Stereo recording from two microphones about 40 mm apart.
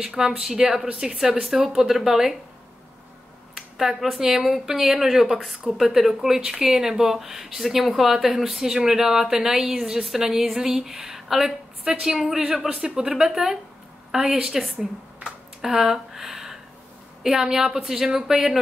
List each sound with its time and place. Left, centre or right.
0.0 s speech: centre
3.5 s a sound: centre
4.2 s speech: centre
11.8 s speech: centre